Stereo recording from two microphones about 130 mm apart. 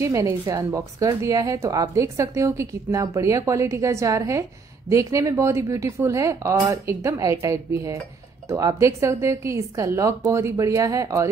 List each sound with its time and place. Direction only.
0.0 s speech: 25° right (ahead or behind)